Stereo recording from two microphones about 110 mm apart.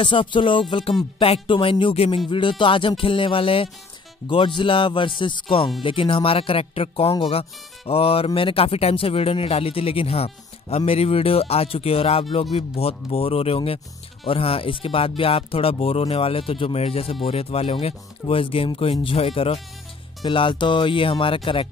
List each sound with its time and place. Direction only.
0.0 s music: 50° left (ahead or behind)
3.0 s speech: 50° left (ahead or behind)
4.3 s music: 50° left (ahead or behind)
5.8 s speech: 50° left (ahead or behind)
20.2 s music: 50° left (ahead or behind)